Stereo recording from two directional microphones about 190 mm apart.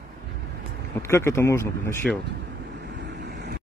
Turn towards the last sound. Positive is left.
turn(degrees=-60)  # may be behind; listen again after turning